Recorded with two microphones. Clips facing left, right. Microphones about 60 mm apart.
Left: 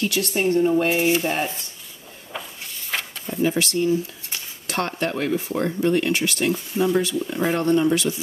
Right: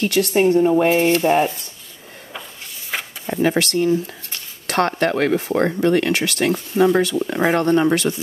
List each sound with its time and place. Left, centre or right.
0.0 s speech: right
2.9 s a sound: centre
3.3 s speech: right